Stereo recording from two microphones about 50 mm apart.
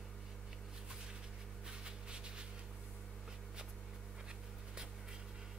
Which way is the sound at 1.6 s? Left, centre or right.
Centre.